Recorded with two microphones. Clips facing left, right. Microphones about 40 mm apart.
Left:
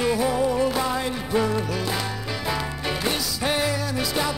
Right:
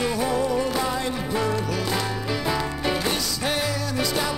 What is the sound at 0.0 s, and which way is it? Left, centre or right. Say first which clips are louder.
Music: left 2 dB; centre.